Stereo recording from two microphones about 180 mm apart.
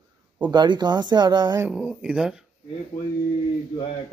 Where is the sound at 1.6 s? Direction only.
5° right (ahead or behind).